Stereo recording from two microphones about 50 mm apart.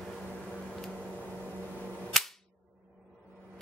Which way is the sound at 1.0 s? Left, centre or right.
Right.